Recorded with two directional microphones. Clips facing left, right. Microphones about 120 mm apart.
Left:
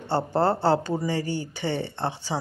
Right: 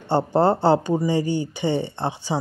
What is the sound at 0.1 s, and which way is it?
Speech, 15° right (ahead or behind).